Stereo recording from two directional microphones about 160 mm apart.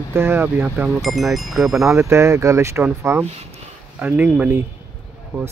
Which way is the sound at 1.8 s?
15° right (ahead or behind).